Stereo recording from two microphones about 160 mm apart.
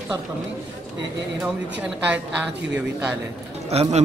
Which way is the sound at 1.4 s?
10° right (ahead or behind).